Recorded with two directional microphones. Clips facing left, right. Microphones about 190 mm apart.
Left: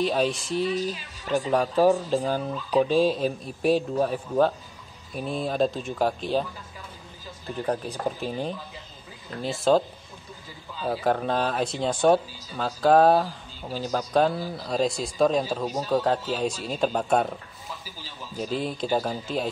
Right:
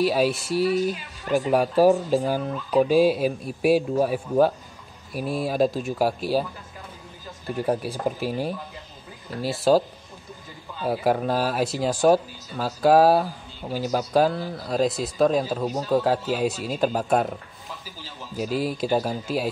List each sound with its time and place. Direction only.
0.0 s speech: 5° right (ahead or behind)
7.6 s speech: 5° right (ahead or behind)
10.9 s speech: 10° right (ahead or behind)
14.3 s speech: 10° left (ahead or behind)
14.6 s speech: centre (ahead or behind)
18.4 s speech: 5° right (ahead or behind)